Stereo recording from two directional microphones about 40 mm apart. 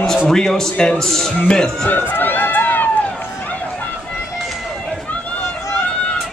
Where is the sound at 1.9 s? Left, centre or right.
Left.